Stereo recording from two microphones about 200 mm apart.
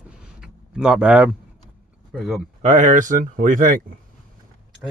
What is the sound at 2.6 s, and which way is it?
Speech, 40° right (ahead or behind).